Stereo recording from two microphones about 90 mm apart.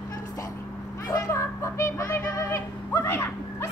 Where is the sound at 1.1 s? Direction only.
35° left (ahead or behind).